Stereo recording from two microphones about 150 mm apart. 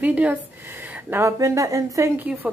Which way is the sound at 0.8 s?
15° right (ahead or behind).